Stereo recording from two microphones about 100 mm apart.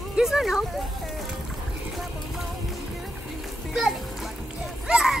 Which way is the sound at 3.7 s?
5° right (ahead or behind).